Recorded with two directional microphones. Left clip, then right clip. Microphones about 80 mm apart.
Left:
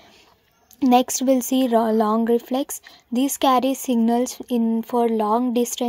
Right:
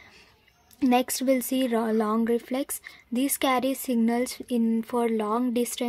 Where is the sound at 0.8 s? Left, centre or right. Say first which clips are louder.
Left 6 dB; left.